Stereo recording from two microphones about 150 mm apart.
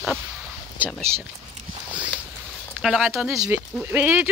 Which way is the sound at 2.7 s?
5° right (ahead or behind).